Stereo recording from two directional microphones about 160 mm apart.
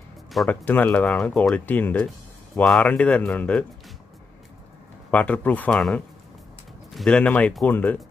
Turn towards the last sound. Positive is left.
turn(degrees=10)  # may be behind; listen again after turning